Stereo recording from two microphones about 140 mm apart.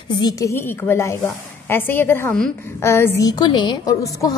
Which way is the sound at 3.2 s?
30° left (ahead or behind).